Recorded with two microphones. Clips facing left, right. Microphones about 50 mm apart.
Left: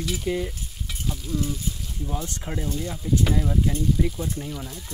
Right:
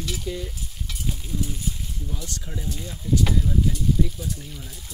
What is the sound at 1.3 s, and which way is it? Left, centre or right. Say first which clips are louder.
Speech: left 3 dB; left.